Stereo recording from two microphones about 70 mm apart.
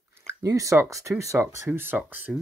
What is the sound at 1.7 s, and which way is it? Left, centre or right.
Speech, right.